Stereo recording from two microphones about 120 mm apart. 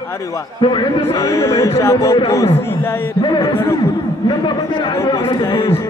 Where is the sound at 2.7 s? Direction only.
20° left (ahead or behind).